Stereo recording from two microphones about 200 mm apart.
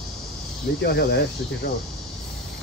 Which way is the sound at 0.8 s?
55° left (ahead or behind).